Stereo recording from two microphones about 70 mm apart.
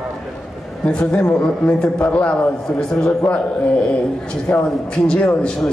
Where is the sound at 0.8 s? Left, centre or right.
Centre.